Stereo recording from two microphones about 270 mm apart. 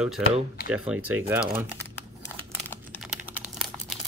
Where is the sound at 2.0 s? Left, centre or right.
Centre.